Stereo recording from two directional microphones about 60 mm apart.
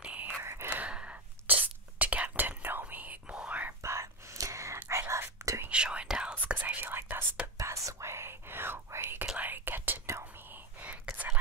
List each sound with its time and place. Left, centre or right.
0.0 s whispering: right
0.4 s sigh: right
0.7 s whispering: right
3.8 s whispering: right
5.7 s whispering: centre
6.3 s whispering: right
7.5 s whispering: right